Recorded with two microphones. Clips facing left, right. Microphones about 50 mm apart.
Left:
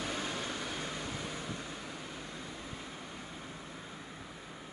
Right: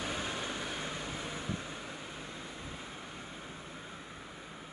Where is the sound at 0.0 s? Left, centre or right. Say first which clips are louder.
Even; centre.